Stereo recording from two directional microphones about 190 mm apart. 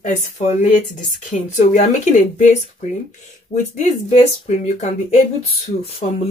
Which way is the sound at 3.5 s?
40° left (ahead or behind).